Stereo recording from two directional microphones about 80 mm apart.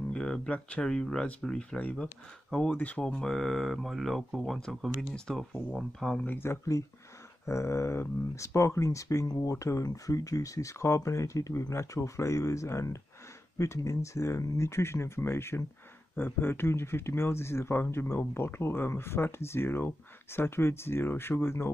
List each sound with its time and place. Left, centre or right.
0.1 s speech: centre
6.2 s speech: left